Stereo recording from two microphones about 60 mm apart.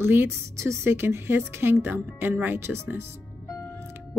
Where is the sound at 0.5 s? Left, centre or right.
Right.